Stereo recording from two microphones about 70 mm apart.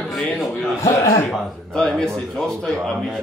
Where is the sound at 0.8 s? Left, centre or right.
Left.